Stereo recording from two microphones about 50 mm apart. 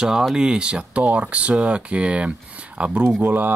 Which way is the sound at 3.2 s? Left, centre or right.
Right.